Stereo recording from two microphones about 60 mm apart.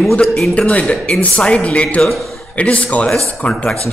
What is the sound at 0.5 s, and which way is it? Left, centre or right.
A man's voice, left.